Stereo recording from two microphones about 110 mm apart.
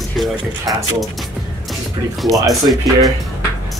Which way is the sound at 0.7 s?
35° right (ahead or behind).